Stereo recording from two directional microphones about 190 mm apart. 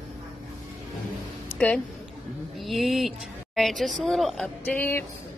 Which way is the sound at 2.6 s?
Centre (ahead or behind).